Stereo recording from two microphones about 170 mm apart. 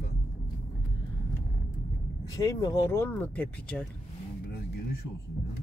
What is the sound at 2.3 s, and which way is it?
Speech, 20° left (ahead or behind).